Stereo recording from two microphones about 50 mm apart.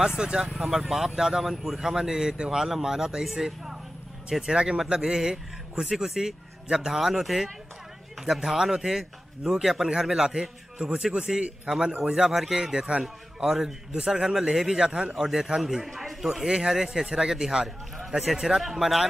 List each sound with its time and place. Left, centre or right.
0.2 s speech: centre
0.6 s speech: centre
13.0 s a man's voice: centre